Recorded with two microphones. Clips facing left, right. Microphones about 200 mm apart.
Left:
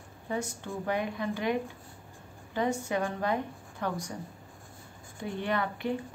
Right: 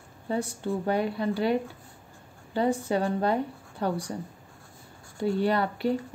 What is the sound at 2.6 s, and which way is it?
A woman's voice, 35° right (ahead or behind).